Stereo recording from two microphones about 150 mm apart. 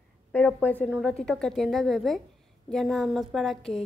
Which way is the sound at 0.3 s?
5° left (ahead or behind).